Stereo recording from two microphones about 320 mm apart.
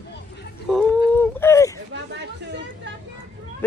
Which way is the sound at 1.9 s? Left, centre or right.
Right.